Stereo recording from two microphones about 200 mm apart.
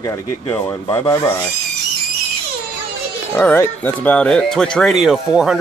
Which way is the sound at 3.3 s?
10° left (ahead or behind).